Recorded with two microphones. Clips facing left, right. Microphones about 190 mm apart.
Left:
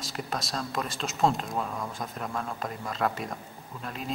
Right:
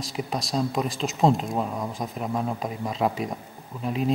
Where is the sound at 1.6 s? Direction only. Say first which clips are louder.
Right 5 dB; 20° right (ahead or behind).